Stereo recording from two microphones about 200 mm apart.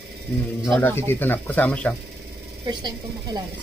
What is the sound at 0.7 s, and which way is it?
Speech, 10° left (ahead or behind).